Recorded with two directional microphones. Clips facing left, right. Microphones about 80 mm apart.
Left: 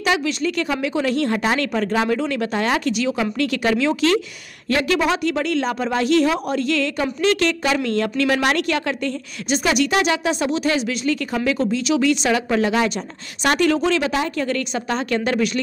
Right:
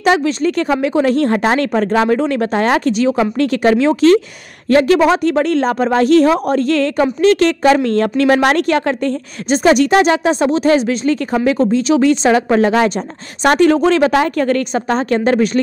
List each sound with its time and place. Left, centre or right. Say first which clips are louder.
0.0 s speech: right 7 dB; right